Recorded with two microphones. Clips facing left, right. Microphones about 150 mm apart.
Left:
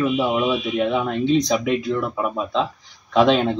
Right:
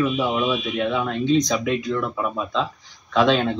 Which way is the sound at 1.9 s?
25° left (ahead or behind).